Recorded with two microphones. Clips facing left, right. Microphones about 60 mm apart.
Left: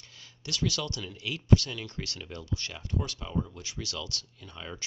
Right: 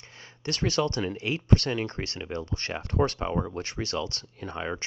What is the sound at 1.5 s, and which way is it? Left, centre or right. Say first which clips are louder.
Speech: even; right.